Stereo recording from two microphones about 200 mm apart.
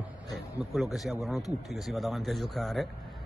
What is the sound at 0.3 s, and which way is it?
A man's voice, centre (ahead or behind).